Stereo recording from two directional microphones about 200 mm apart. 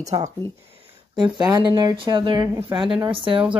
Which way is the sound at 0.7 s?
30° right (ahead or behind).